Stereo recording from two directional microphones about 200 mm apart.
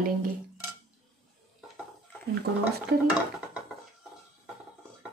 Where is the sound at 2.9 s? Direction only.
50° right (ahead or behind).